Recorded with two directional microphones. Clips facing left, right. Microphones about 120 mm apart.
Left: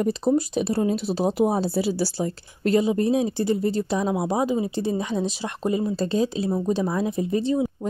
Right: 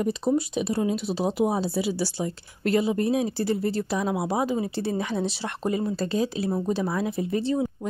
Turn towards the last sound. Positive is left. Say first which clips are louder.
# left 2 dB
turn(degrees=15)  # may be behind; listen again after turning